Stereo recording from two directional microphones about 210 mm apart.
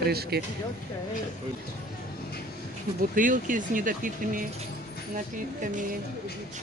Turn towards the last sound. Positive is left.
turn(degrees=-40)  # may be behind; listen again after turning